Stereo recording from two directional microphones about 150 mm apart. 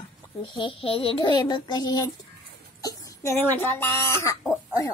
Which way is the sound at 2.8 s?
25° left (ahead or behind).